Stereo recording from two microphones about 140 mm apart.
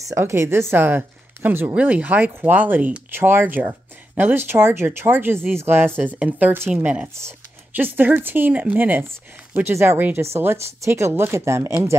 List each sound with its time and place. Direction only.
0.1 s speech: 20° right (ahead or behind)